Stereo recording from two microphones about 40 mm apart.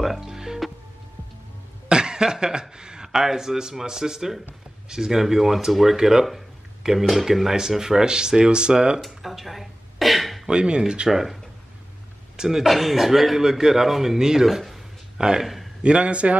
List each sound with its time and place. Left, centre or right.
0.0 s music: centre
1.9 s cough: right
2.8 s a man's voice: centre
9.0 s a sound: centre
10.5 s a man's voice: right
11.1 s speech: centre
12.4 s a man's voice: centre
15.1 s a man's voice: centre
15.4 s a sound: centre
15.8 s a man's voice: right